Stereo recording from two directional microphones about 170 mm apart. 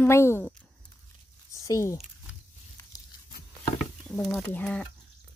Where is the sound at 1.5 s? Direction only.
20° left (ahead or behind).